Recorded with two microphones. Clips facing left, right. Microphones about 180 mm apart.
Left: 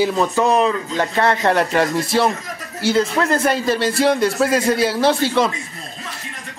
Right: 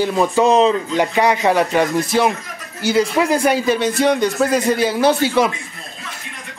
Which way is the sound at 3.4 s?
Centre (ahead or behind).